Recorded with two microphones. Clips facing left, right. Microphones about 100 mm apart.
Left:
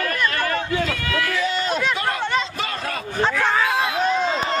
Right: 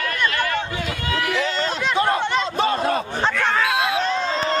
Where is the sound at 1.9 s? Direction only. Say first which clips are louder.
Right 5 dB; 30° right (ahead or behind).